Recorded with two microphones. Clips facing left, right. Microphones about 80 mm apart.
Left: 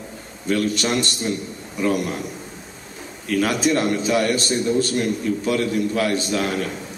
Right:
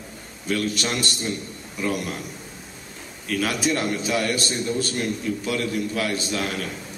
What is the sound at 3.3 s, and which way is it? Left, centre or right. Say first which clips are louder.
Speech: left 5 dB; centre.